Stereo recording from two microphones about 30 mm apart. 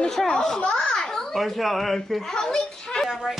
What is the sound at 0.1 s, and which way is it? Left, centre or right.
Speech, centre.